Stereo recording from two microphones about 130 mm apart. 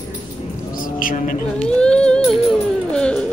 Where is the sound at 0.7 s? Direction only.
90° left.